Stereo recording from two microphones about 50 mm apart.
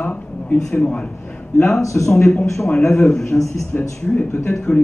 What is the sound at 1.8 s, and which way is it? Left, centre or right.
Speech, left.